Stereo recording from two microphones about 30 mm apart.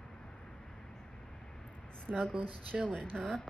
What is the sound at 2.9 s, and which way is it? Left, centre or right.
Speech, left.